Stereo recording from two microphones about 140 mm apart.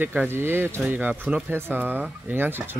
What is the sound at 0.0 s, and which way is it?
Speech, 15° right (ahead or behind).